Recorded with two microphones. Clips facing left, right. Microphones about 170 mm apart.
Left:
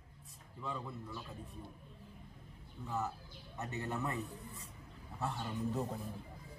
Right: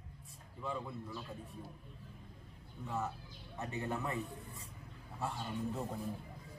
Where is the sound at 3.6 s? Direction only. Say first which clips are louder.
Right 1 dB; 30° right (ahead or behind).